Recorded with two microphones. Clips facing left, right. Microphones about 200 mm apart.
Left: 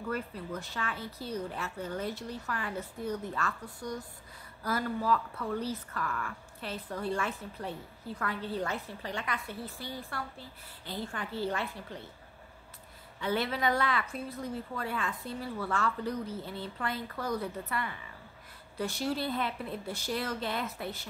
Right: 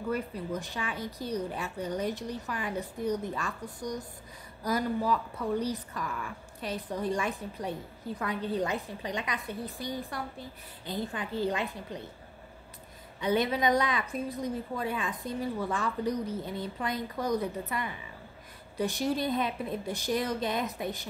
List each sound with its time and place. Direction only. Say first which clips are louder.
0.1 s speech: right 4 dB; 15° right (ahead or behind)
13.2 s speech: right 4 dB; 15° right (ahead or behind)